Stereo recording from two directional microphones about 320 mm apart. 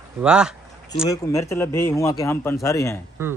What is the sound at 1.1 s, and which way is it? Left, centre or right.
A man's voice, centre.